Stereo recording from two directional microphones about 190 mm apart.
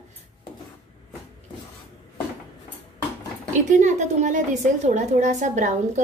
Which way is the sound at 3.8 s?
40° right (ahead or behind).